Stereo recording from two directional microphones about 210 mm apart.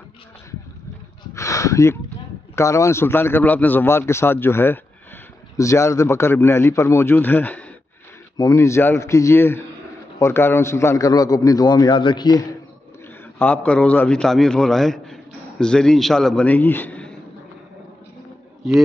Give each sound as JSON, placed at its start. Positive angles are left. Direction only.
{"t": 1.3, "sound": "a sound", "side_deg": 15}
{"t": 2.5, "sound": "a man's voice", "side_deg": 15}
{"t": 13.4, "sound": "a man's voice", "side_deg": 5}